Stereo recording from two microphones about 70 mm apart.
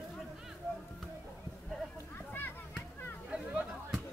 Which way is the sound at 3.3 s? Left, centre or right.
Centre.